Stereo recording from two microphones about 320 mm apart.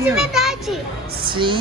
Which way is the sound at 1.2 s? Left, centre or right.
Centre.